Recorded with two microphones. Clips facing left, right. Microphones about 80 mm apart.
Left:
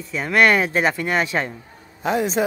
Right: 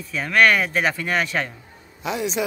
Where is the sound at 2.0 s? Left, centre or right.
Left.